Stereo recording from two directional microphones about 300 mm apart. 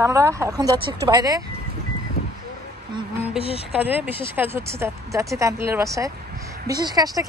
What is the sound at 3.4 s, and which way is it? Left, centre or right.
Speech, centre.